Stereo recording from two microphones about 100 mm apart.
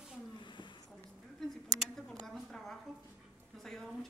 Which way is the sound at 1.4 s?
5° left (ahead or behind).